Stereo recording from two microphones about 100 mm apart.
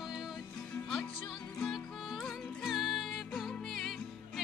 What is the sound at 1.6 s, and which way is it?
Music, 5° left (ahead or behind).